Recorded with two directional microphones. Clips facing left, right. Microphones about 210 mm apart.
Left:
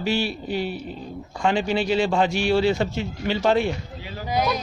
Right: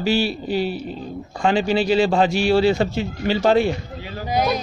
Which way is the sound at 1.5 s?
90° right.